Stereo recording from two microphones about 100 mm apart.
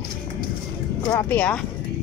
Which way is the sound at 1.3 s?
15° left (ahead or behind).